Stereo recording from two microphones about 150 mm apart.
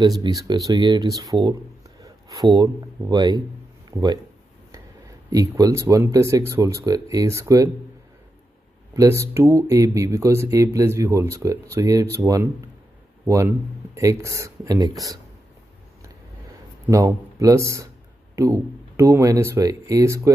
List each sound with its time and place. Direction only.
0.0 s speech: 30° right (ahead or behind)
5.3 s speech: 25° right (ahead or behind)
8.9 s speech: 20° right (ahead or behind)
16.8 s speech: 20° right (ahead or behind)